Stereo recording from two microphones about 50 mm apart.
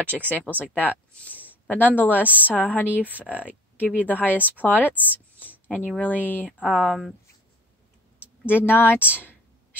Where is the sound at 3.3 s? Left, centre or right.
Right.